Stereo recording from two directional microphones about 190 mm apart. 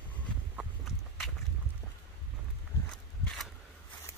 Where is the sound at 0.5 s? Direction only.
Centre (ahead or behind).